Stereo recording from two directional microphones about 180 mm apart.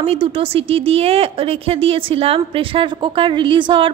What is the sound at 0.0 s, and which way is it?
Speech, 30° right (ahead or behind).